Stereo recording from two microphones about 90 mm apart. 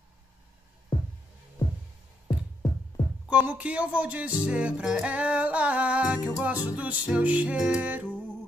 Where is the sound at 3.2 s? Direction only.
15° right (ahead or behind).